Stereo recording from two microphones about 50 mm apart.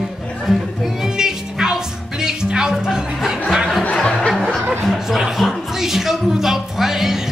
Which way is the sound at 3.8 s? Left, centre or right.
Centre.